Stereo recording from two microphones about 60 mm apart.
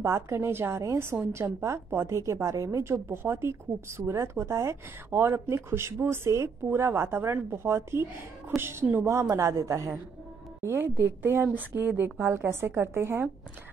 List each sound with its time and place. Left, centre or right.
0.0 s a woman's voice: right
10.6 s a woman's voice: right